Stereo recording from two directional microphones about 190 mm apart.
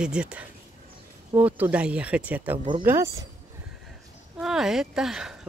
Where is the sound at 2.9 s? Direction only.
15° right (ahead or behind).